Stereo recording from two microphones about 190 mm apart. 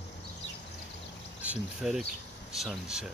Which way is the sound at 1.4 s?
5° right (ahead or behind).